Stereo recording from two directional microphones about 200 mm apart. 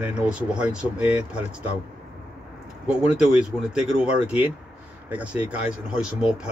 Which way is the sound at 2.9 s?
5° right (ahead or behind).